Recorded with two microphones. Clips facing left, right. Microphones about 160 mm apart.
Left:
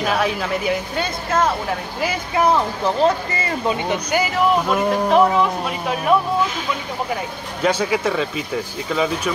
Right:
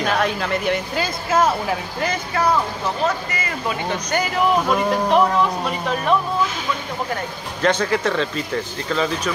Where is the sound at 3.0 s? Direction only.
30° left (ahead or behind).